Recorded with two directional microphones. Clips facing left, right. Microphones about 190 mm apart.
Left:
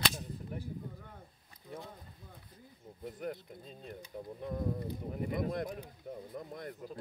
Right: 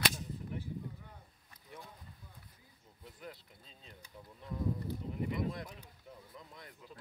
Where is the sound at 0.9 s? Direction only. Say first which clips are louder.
Left 3 dB; 50° left (ahead or behind).